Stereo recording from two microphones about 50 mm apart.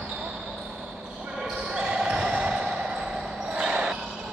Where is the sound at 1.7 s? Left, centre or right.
Centre.